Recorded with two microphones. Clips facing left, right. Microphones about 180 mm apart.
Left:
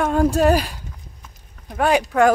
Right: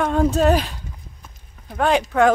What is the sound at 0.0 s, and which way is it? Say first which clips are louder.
Speech: left 1 dB; 5° left (ahead or behind).